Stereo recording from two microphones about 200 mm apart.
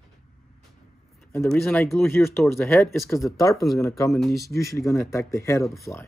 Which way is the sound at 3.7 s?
15° left (ahead or behind).